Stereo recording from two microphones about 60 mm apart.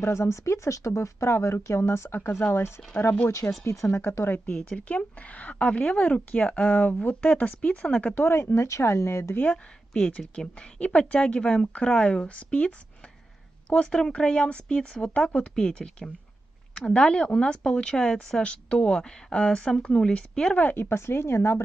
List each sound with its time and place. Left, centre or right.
0.0 s speech: left
3.3 s speech: left
4.7 s speech: left
8.4 s speech: left
9.4 s a woman's voice: centre
20.7 s speech: left